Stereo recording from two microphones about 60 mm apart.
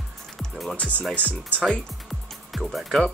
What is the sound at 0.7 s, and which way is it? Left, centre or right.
Speech, left.